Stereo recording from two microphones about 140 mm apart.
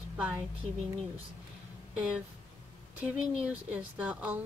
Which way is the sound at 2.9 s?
10° right (ahead or behind).